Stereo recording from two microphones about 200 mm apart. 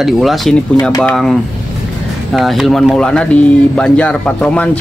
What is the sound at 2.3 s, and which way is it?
Speech, centre (ahead or behind).